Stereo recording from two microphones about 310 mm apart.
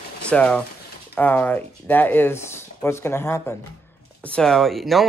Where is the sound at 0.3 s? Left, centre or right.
Centre.